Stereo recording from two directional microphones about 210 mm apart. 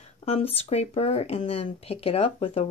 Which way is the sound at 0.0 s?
30° left (ahead or behind).